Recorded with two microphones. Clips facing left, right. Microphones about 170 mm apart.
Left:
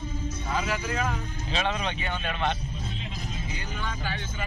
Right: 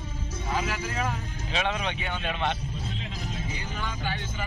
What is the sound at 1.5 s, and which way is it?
Speech, 10° right (ahead or behind).